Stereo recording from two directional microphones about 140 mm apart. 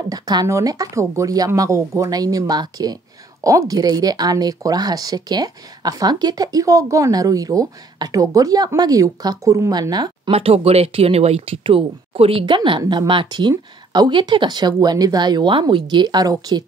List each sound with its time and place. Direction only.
0.1 s speech: 25° right (ahead or behind)
10.3 s speech: 45° right (ahead or behind); by 16.6 s 30° right (ahead or behind)